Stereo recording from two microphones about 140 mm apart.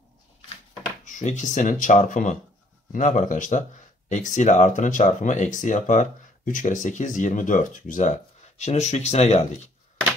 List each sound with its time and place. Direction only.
1.0 s speech: 60° left (ahead or behind)